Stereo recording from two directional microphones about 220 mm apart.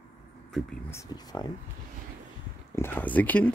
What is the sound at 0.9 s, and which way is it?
Speech, 15° left (ahead or behind).